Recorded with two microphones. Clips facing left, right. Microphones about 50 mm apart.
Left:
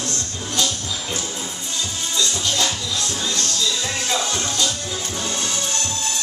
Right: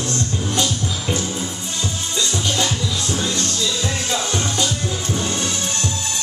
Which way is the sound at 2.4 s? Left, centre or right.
Centre.